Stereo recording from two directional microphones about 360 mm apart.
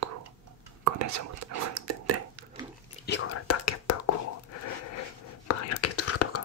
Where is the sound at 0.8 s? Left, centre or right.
Right.